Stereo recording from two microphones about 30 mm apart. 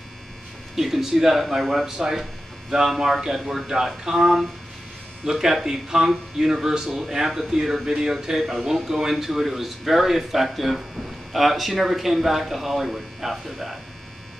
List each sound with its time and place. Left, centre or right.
0.7 s speech: centre
1.9 s speech: centre
5.2 s speech: centre
7.2 s speech: centre
7.5 s speech: centre